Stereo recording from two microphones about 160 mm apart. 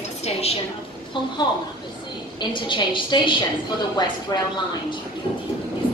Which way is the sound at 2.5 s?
30° left (ahead or behind).